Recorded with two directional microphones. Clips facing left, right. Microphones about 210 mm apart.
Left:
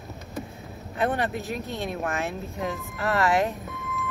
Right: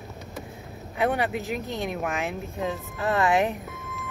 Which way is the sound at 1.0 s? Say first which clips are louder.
Right 1 dB; 15° right (ahead or behind).